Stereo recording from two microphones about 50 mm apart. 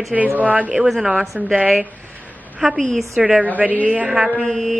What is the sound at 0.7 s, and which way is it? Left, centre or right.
Speech, centre.